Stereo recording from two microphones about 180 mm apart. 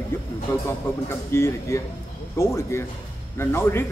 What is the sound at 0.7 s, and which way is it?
A man's voice, 15° left (ahead or behind).